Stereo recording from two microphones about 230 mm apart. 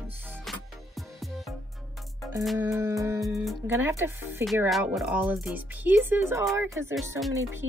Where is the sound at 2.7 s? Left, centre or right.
Centre.